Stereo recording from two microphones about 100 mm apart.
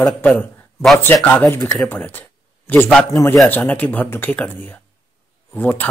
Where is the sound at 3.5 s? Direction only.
15° left (ahead or behind).